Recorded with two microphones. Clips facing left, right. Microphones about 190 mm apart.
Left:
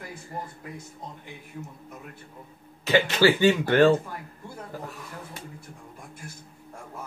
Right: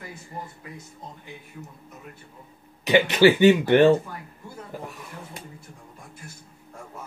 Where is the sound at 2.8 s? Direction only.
15° right (ahead or behind).